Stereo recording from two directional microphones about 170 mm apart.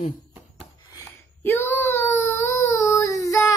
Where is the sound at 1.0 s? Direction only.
15° left (ahead or behind).